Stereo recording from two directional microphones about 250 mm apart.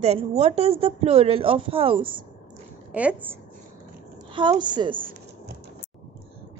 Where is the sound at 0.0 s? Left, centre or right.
Right.